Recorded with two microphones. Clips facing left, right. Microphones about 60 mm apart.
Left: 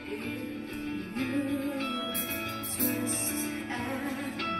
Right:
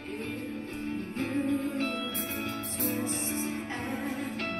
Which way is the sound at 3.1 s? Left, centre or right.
Left.